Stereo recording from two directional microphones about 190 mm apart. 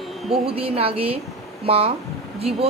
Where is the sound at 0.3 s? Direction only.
30° right (ahead or behind).